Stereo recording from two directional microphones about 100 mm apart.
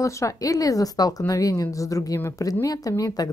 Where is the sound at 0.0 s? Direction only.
30° left (ahead or behind).